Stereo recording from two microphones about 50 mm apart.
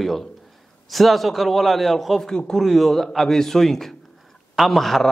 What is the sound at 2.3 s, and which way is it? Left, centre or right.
Speech, centre.